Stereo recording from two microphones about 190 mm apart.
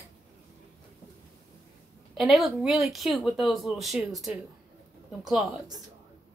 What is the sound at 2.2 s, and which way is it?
Speech, centre (ahead or behind).